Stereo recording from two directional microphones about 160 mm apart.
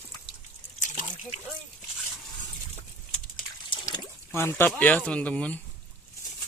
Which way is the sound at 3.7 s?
25° left (ahead or behind).